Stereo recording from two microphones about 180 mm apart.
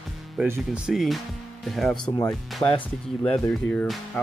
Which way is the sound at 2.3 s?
Centre (ahead or behind).